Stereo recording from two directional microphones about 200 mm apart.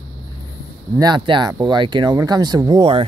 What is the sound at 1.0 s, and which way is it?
Speech, 20° right (ahead or behind).